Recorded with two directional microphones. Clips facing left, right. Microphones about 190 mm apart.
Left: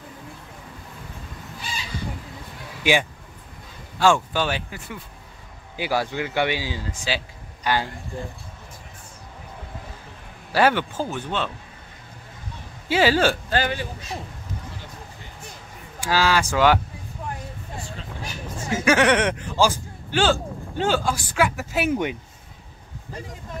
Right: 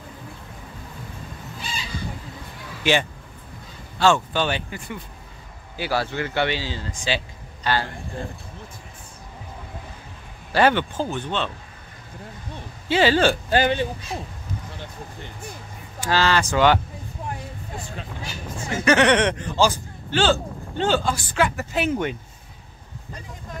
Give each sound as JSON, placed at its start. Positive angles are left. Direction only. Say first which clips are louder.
{"t": 2.8, "sound": "speech", "louder": "even", "side_deg": 10}
{"t": 5.8, "sound": "speech", "louder": "even", "side_deg": 15}
{"t": 10.5, "sound": "speech", "louder": "right 1 dB", "side_deg": 5}
{"t": 12.8, "sound": "speech", "louder": "right 1 dB", "side_deg": 5}
{"t": 13.5, "sound": "speech", "louder": "right 4 dB", "side_deg": -20}
{"t": 16.0, "sound": "speech", "louder": "even", "side_deg": 10}
{"t": 18.9, "sound": "speech", "louder": "right 1 dB", "side_deg": 5}